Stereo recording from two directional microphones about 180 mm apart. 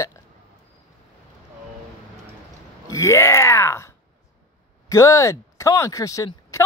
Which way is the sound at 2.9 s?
15° left (ahead or behind).